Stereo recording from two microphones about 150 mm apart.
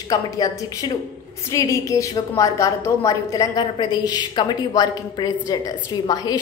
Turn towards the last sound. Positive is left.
turn(degrees=25)  # may be behind; listen again after turning